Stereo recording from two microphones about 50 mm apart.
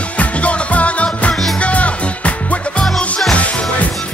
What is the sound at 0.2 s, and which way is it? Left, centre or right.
Music, left.